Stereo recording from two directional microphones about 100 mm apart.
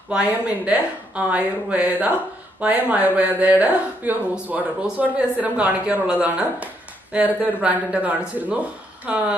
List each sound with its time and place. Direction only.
0.1 s speech: 15° right (ahead or behind)